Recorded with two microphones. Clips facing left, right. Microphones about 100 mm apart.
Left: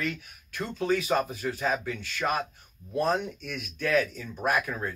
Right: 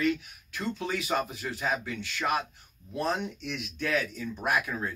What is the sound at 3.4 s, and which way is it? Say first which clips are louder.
Speech: left 1 dB; 20° right (ahead or behind).